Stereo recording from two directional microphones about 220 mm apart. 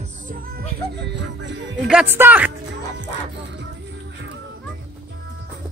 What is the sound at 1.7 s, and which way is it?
Speech, 5° right (ahead or behind).